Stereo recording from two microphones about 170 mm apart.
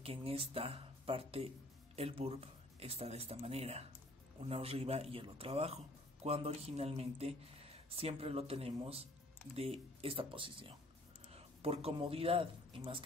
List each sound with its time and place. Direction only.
0.0 s speech: 35° right (ahead or behind)